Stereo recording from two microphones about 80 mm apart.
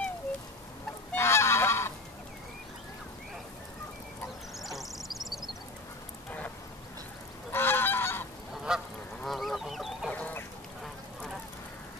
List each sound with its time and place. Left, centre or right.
1.1 s goose: left
4.6 s duck: centre
7.5 s goose: left
8.7 s goose: centre
10.1 s goose: centre